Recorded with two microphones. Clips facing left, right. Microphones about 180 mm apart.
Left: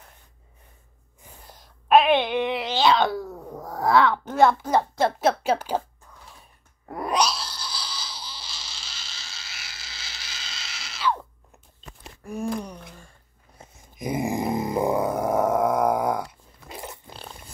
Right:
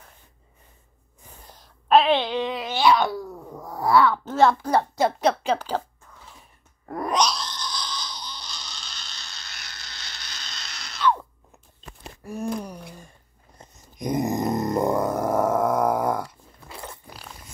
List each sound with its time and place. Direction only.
1.9 s wail: 15° left (ahead or behind)
3.8 s speech: 20° left (ahead or behind)
4.7 s a woman's voice: centre (ahead or behind)
7.1 s baby laughter: 5° left (ahead or behind)
12.3 s a sound: centre (ahead or behind)
13.6 s grunt: 5° left (ahead or behind)
16.0 s dog: 10° left (ahead or behind)